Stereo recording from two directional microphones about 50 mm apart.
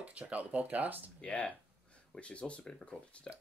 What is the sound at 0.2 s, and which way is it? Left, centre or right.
Speech, right.